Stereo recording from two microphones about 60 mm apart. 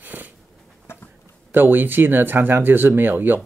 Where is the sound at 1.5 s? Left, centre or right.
Right.